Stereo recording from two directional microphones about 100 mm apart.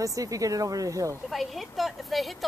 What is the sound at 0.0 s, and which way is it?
Speech, 35° right (ahead or behind).